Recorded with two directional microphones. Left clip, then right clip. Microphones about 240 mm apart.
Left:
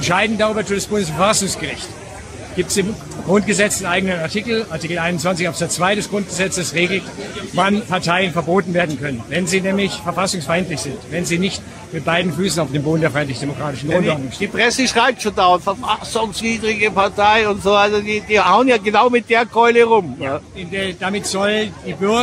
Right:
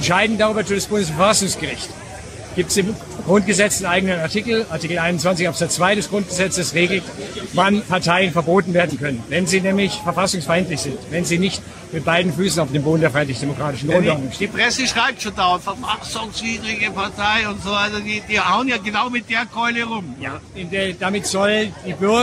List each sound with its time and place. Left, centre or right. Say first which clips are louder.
0.0 s a man's voice: even; centre; by 20.0 s left
20.7 s a man's voice: even; centre